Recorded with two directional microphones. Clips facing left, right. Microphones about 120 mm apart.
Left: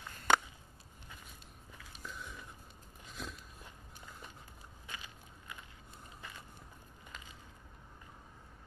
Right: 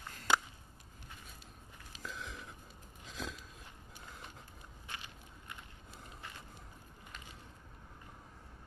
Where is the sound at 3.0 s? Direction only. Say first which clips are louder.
Right 2 dB; 90° right.